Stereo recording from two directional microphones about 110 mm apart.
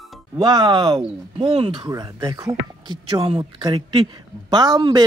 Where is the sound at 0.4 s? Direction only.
40° right (ahead or behind).